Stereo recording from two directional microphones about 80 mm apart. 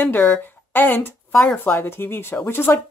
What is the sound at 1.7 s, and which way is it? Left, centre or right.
Speech, left.